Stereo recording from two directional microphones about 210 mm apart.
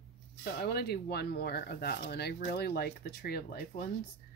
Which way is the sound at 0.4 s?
50° left (ahead or behind).